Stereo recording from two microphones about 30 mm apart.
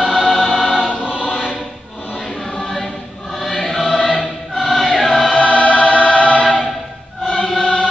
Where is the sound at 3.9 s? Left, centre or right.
Left.